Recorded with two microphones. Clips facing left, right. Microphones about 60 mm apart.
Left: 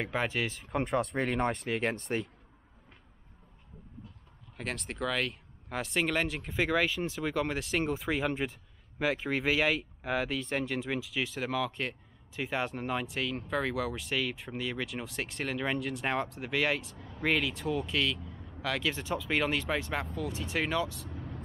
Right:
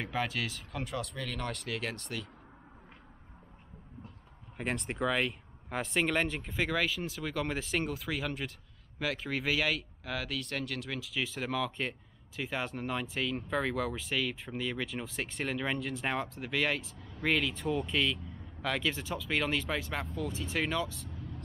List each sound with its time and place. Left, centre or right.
0.0 s speech: centre
1.1 s speech: left
1.7 s speech: left
4.6 s speech: centre
7.5 s speech: centre
7.8 s speech: centre
11.2 s speech: centre
21.1 s vehicle: left